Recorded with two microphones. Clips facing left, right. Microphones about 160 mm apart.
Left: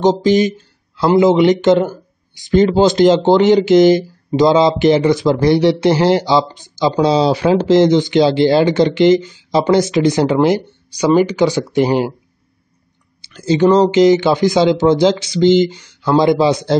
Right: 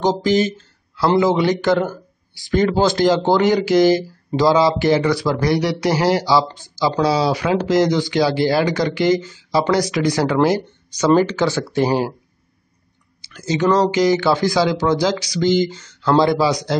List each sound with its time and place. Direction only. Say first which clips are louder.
0.0 s a man's voice: left 4 dB; 20° left (ahead or behind)
13.2 s a man's voice: left 6 dB; 30° left (ahead or behind)